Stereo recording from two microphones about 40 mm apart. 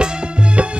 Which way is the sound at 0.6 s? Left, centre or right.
Right.